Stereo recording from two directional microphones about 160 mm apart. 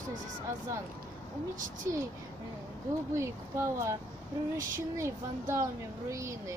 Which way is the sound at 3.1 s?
20° right (ahead or behind).